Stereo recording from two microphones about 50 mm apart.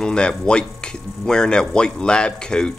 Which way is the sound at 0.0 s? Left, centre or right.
Centre.